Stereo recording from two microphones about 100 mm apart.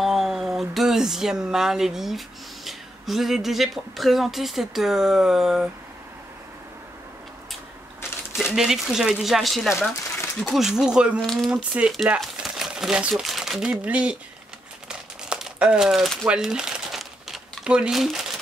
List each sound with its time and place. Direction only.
0.0 s speech: centre (ahead or behind)
8.5 s speech: 5° right (ahead or behind)
9.8 s speech: 25° left (ahead or behind)
10.8 s speech: 10° right (ahead or behind)
11.1 s speech: 5° left (ahead or behind)
11.5 s speech: 10° right (ahead or behind)
14.9 s crumpling: 5° right (ahead or behind)